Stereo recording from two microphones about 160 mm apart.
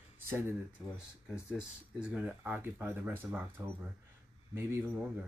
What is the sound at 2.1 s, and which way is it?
Speech, 10° right (ahead or behind).